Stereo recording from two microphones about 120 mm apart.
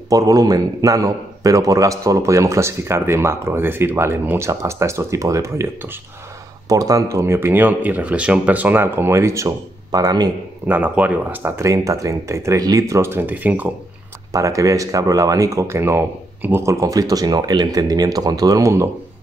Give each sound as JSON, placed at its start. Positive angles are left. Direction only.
{"t": 0.1, "sound": "a man's voice", "side_deg": -30}
{"t": 10.7, "sound": "a man's voice", "side_deg": -15}
{"t": 14.3, "sound": "a man's voice", "side_deg": -25}